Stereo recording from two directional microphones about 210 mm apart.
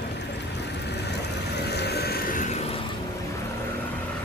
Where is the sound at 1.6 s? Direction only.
50° left (ahead or behind); by 2.8 s 30° left (ahead or behind).